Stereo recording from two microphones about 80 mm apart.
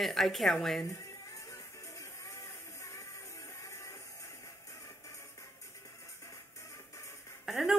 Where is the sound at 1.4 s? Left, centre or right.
Left.